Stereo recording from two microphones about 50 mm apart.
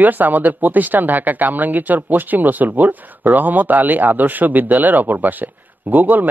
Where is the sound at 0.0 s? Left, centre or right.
Right.